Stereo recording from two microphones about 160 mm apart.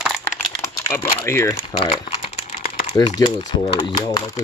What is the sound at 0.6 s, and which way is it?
Speech, 15° left (ahead or behind).